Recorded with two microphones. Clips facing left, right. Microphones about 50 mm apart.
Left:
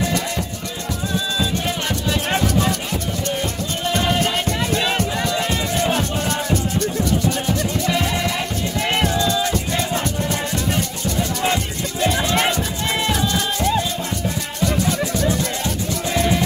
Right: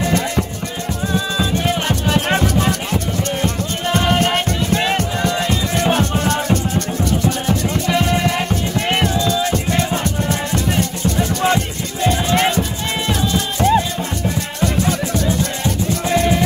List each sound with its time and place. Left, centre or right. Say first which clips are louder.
0.0 s music: right 4 dB; right
3.4 s music: right 3 dB; right
5.7 s music: right 3 dB; right
7.9 s music: right 7 dB; right
13.6 s music: right 7 dB; right
15.6 s music: right 4 dB; right